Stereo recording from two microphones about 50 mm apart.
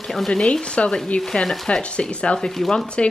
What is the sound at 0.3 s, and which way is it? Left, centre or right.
Speech, centre.